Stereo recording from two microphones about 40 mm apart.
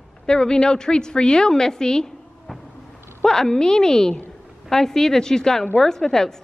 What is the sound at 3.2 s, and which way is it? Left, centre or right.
A woman's voice, centre.